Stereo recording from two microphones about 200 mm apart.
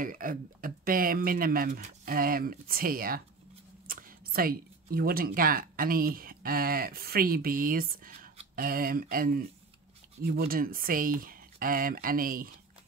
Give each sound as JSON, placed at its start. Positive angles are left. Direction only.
{"t": 0.0, "sound": "speech", "side_deg": -45}